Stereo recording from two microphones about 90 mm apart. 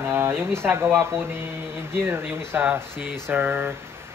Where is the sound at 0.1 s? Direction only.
25° right (ahead or behind).